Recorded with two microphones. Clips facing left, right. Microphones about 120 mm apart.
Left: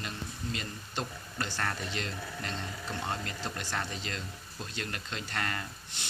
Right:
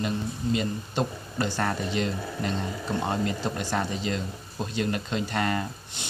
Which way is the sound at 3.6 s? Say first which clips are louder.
Right 8 dB; 15° right (ahead or behind).